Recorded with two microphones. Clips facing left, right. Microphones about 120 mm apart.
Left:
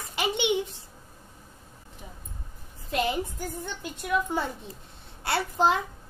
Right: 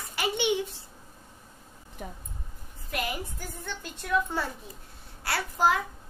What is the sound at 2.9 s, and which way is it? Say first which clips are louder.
Speech: left 6 dB; 25° left (ahead or behind).